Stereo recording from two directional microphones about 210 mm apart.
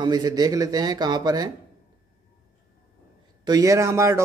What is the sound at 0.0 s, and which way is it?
Speech, 20° right (ahead or behind).